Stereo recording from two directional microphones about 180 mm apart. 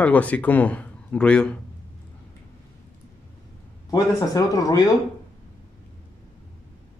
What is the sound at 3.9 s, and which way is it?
Speech, 20° left (ahead or behind).